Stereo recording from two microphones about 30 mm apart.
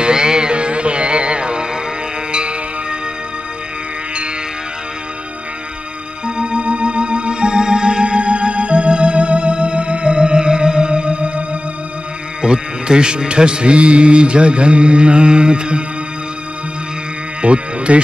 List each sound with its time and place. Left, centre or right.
0.0 s music: right
6.2 s music: right
12.4 s speech: right
17.4 s speech: right